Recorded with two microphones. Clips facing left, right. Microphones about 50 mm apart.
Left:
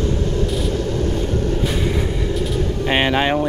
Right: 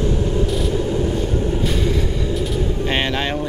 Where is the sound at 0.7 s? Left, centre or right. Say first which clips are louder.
Right 1 dB; centre.